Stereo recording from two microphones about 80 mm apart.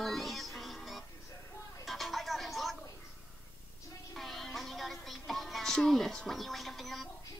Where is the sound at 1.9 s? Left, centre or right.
Centre.